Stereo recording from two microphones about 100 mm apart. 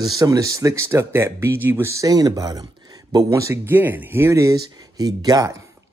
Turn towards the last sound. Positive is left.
turn(degrees=-40)  # may be behind; listen again after turning